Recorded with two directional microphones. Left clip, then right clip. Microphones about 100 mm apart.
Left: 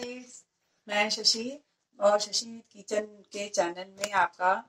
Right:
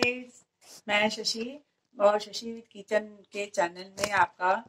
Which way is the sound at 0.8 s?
20° left (ahead or behind).